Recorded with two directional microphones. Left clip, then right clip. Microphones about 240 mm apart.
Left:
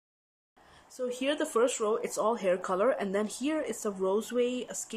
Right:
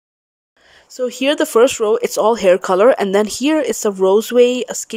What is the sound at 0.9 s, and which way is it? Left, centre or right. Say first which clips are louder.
Speech: right 14 dB; right.